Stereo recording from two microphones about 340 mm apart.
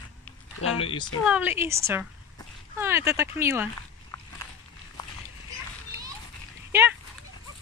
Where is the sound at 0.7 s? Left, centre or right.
Centre.